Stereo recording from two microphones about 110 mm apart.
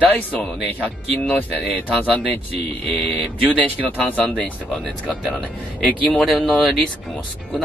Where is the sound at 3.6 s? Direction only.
15° left (ahead or behind).